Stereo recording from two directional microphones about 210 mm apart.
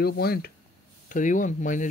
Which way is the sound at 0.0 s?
45° left (ahead or behind).